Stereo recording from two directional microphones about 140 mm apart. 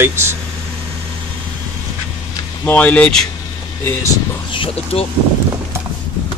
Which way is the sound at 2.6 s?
10° left (ahead or behind).